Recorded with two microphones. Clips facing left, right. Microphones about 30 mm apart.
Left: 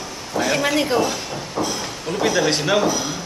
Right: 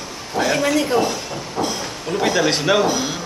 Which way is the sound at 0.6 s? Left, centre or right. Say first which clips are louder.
Right 1 dB; centre.